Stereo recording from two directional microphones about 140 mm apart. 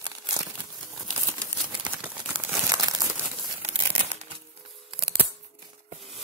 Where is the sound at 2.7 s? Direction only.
30° right (ahead or behind).